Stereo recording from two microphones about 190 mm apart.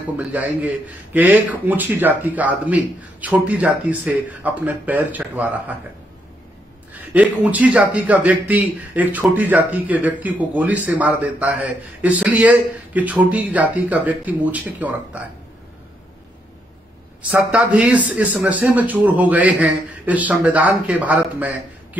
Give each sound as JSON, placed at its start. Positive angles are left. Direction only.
{"t": 0.0, "sound": "a man's voice", "side_deg": -10}
{"t": 6.9, "sound": "a man's voice", "side_deg": -10}
{"t": 17.3, "sound": "a man's voice", "side_deg": -5}